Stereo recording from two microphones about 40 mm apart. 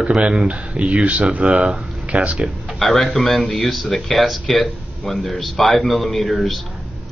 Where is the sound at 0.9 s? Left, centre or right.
Right.